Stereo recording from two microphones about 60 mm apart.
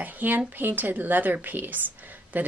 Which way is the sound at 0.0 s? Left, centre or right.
Right.